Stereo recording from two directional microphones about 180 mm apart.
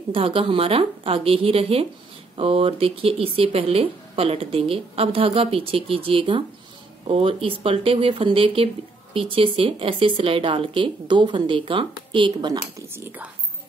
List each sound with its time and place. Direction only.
0.1 s speech: 30° right (ahead or behind)
12.9 s speech: 10° right (ahead or behind)